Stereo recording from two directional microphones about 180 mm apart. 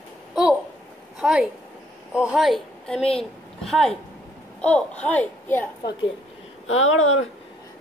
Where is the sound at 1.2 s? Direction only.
5° right (ahead or behind).